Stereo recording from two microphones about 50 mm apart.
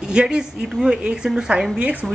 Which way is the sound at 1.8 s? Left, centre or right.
Right.